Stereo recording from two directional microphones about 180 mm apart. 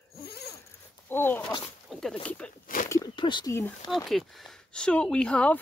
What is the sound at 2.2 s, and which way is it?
Speech, 5° left (ahead or behind).